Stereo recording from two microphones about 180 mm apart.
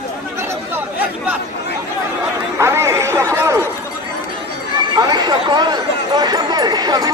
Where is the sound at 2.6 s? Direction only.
15° right (ahead or behind).